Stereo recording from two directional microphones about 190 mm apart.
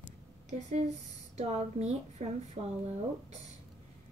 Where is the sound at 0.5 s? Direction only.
35° right (ahead or behind).